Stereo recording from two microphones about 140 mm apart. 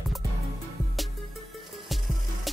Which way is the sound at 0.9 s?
Centre (ahead or behind).